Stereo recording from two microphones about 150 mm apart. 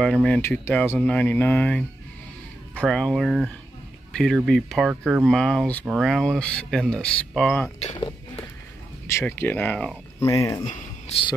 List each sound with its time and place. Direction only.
0.0 s speech: 5° left (ahead or behind)
9.0 s speech: 15° left (ahead or behind)
10.2 s speech: 20° left (ahead or behind)
10.6 s a sound: 55° left (ahead or behind)